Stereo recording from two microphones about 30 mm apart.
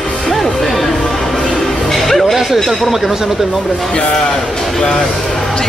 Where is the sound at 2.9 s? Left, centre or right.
Centre.